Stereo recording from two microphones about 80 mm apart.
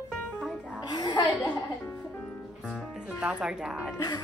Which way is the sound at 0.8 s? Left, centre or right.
Left.